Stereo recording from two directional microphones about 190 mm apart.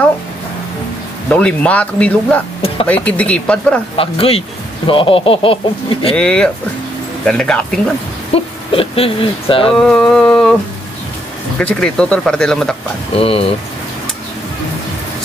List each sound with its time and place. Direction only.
1.3 s speech: 5° left (ahead or behind)
3.9 s speech: 30° left (ahead or behind)
6.1 s speech: 5° left (ahead or behind)
8.3 s speech: 30° left (ahead or behind)
9.8 s a sound: 5° left (ahead or behind)
11.5 s speech: 5° left (ahead or behind)
13.1 s speech: 30° left (ahead or behind)